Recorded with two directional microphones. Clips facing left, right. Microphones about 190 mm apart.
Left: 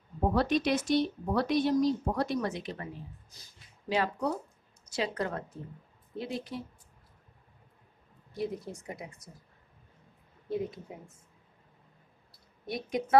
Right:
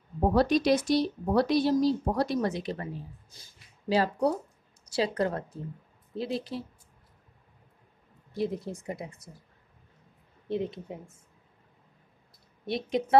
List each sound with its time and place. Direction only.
0.3 s speech: 35° right (ahead or behind)
8.4 s speech: 30° right (ahead or behind)
10.5 s speech: 25° right (ahead or behind)
12.6 s speech: 25° right (ahead or behind)